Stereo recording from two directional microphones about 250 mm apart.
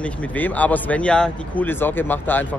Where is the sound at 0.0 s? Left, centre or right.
Centre.